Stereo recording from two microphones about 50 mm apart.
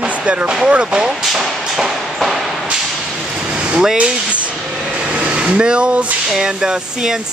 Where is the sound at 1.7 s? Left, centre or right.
Centre.